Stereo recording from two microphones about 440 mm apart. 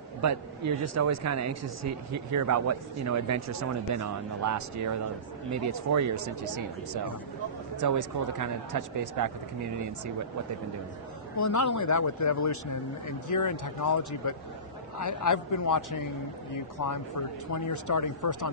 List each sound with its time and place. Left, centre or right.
0.2 s speech: right
11.3 s speech: left